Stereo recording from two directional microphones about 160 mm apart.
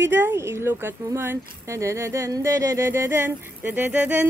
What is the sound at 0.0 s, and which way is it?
Speech, 15° right (ahead or behind).